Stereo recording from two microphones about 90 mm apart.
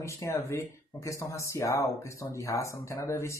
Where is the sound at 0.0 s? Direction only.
35° left (ahead or behind).